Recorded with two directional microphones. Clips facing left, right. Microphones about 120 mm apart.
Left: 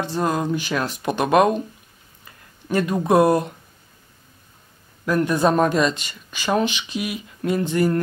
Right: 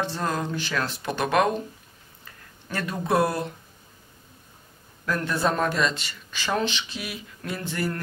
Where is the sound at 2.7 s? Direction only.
15° left (ahead or behind).